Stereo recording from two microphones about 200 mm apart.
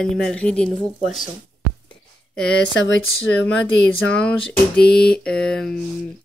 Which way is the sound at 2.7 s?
70° left (ahead or behind).